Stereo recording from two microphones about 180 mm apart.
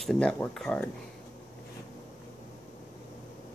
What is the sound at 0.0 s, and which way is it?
Speech, 5° left (ahead or behind).